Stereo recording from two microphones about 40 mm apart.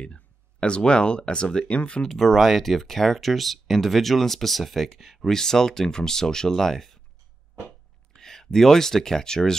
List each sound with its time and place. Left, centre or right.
0.0 s speech: left
2.0 s speech: centre
5.3 s speech: centre
8.2 s speech: centre